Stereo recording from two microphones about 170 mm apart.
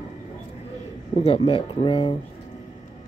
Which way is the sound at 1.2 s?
35° left (ahead or behind).